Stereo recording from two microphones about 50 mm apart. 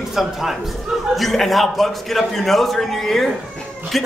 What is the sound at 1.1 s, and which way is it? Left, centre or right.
Speech, centre.